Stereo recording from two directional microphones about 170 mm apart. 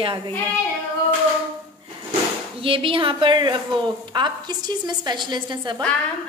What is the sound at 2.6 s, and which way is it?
A woman's voice, 30° right (ahead or behind).